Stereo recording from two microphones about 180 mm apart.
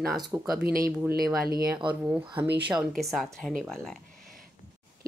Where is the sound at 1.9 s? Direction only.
10° right (ahead or behind).